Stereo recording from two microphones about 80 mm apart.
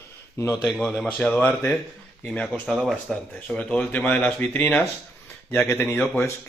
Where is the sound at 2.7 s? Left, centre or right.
Centre.